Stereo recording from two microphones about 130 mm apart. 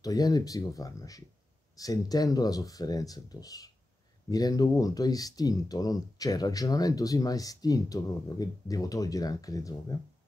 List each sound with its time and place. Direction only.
0.0 s speech: 30° left (ahead or behind)